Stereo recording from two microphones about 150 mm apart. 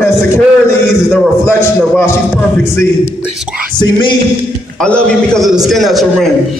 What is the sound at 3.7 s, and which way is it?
Speech, 30° left (ahead or behind).